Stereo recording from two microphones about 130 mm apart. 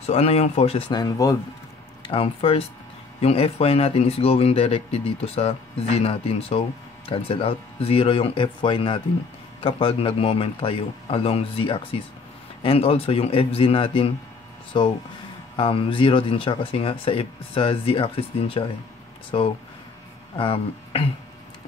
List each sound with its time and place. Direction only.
0.0 s speech: 55° left (ahead or behind)
0.9 s speech: 30° left (ahead or behind)
2.0 s speech: 45° left (ahead or behind)
20.3 s speech: 45° left (ahead or behind)